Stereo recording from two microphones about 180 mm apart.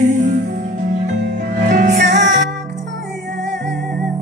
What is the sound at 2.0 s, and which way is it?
Music, 85° right.